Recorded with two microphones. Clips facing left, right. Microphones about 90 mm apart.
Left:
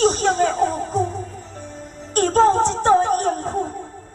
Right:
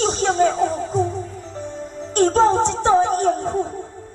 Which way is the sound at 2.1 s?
45° left (ahead or behind).